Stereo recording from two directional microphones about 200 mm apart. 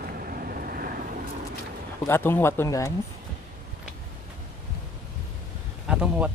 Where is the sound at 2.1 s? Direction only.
10° left (ahead or behind).